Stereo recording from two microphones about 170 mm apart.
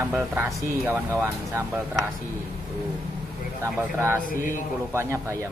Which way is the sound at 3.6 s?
15° right (ahead or behind).